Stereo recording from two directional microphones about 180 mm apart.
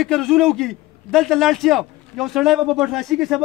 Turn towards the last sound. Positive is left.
turn(degrees=0)  # may be behind; listen again after turning